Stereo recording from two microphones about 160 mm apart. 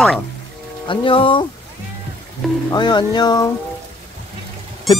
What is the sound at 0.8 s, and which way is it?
Speech, 35° left (ahead or behind).